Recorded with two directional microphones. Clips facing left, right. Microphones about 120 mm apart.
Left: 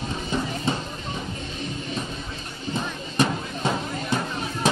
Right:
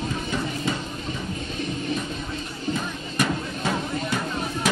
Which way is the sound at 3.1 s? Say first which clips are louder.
Left 2 dB; 20° left (ahead or behind).